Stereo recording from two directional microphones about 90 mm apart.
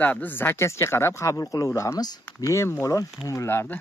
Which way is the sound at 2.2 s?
30° left (ahead or behind).